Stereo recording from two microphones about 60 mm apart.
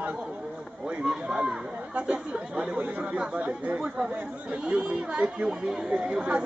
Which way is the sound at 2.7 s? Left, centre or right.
Right.